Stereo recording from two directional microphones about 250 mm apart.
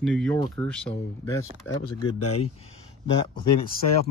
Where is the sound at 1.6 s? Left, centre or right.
Left.